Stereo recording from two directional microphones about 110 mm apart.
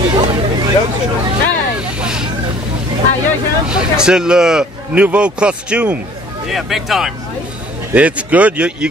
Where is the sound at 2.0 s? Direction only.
5° right (ahead or behind).